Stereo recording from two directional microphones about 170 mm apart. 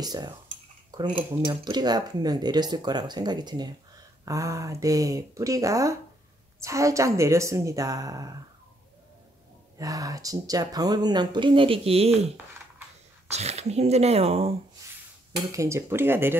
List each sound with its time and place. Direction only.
0.0 s speech: 25° right (ahead or behind)
9.8 s speech: 20° right (ahead or behind); by 12.3 s 35° right (ahead or behind)
13.3 s speech: 40° right (ahead or behind)
15.5 s speech: 15° right (ahead or behind)